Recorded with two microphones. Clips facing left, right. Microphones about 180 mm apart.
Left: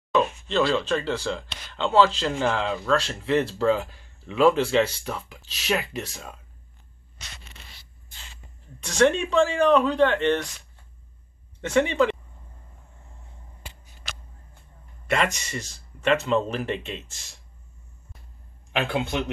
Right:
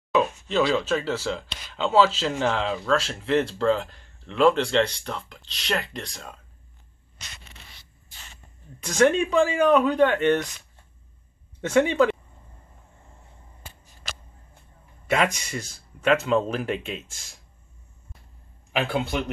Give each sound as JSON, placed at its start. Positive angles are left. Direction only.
{"t": 0.1, "sound": "speech", "side_deg": -5}
{"t": 8.8, "sound": "speech", "side_deg": -5}
{"t": 11.7, "sound": "speech", "side_deg": -5}
{"t": 14.0, "sound": "a sound", "side_deg": -40}
{"t": 15.0, "sound": "speech", "side_deg": -5}
{"t": 18.7, "sound": "speech", "side_deg": 0}